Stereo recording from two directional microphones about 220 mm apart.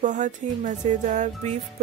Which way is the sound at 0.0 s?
35° right (ahead or behind).